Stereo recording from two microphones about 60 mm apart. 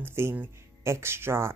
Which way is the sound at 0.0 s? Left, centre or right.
Right.